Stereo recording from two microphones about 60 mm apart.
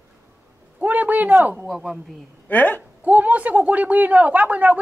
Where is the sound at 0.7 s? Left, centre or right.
Right.